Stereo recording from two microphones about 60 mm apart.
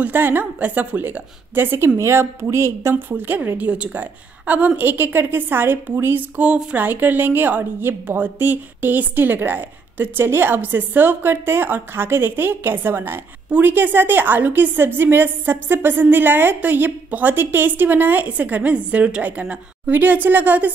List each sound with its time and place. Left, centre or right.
0.0 s a woman's voice: right
2.0 s a woman's voice: right
6.3 s a woman's voice: centre
6.8 s a woman's voice: right